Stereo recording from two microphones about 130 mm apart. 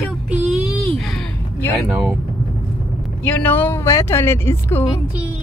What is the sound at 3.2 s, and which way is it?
Speech, 15° left (ahead or behind).